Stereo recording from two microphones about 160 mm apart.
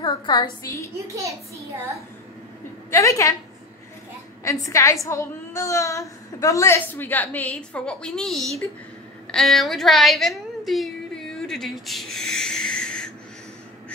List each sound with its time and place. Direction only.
0.0 s a woman's voice: 25° left (ahead or behind)
2.9 s a woman's voice: 20° left (ahead or behind)
4.5 s a woman's voice: 20° left (ahead or behind); by 13.1 s 5° left (ahead or behind)